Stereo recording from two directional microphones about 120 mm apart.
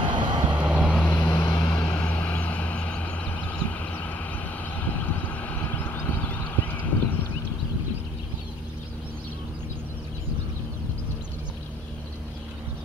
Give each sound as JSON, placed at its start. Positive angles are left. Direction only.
{"t": 0.0, "sound": "vehicle", "side_deg": -40}
{"t": 0.5, "sound": "vehicle", "side_deg": -10}
{"t": 0.9, "sound": "vehicle", "side_deg": 15}
{"t": 1.3, "sound": "vehicle", "side_deg": 45}
{"t": 1.8, "sound": "vehicle", "side_deg": 10}